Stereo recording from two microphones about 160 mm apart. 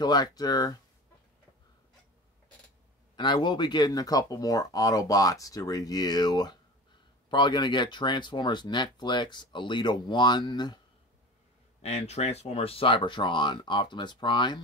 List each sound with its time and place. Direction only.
0.0 s speech: 25° left (ahead or behind)
3.2 s speech: 30° left (ahead or behind)
11.8 s speech: 40° left (ahead or behind)